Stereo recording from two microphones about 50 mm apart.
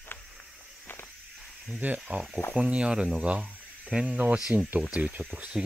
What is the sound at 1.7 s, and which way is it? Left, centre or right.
Speech, right.